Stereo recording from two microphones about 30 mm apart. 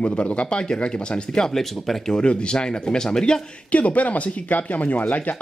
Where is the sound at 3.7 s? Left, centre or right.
Left.